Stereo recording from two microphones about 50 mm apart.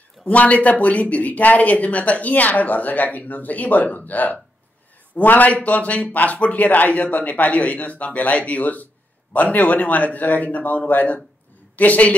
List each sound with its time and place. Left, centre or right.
0.2 s speech: left